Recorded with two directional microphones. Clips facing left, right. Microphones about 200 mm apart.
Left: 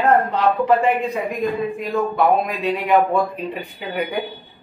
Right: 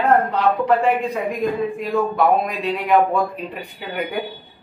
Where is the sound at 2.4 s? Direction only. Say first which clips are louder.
Left 1 dB; centre (ahead or behind).